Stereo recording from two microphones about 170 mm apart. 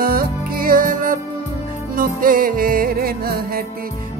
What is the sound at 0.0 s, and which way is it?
Music, 60° right (ahead or behind).